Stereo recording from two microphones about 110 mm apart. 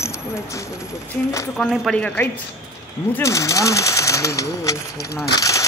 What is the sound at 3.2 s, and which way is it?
Speech, 30° left (ahead or behind).